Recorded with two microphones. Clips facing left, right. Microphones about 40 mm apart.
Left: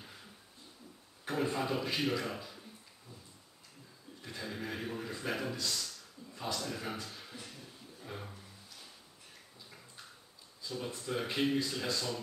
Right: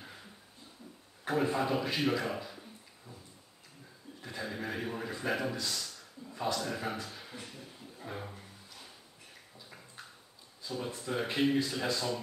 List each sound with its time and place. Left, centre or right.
1.2 s a man's voice: centre
4.2 s a man's voice: centre
8.0 s a sound: centre
11.0 s a man's voice: centre